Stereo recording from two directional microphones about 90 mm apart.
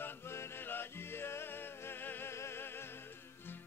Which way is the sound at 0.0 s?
25° left (ahead or behind).